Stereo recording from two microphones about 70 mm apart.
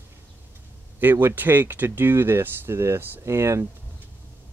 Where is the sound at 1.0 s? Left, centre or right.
Right.